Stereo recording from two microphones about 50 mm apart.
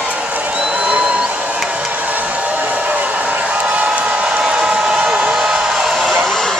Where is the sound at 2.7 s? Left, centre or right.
Right.